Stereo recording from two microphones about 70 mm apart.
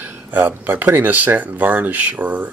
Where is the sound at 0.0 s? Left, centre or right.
Right.